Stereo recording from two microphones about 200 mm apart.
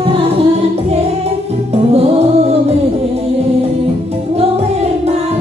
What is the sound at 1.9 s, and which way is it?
Music, 30° right (ahead or behind).